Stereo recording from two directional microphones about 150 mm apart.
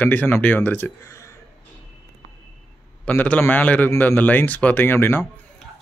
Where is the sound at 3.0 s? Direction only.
10° left (ahead or behind).